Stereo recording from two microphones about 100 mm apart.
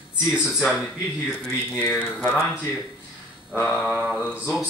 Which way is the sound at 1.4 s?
10° left (ahead or behind).